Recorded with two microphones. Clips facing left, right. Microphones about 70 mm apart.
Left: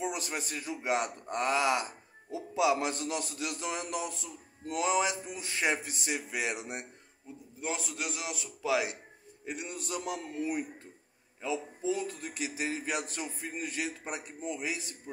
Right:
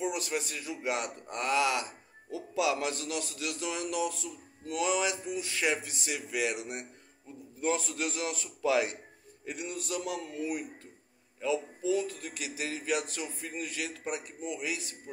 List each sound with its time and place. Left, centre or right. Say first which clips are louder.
0.0 s a man's voice: right 2 dB; left
7.6 s a man's voice: right 5 dB; centre
9.5 s a man's voice: right 1 dB; left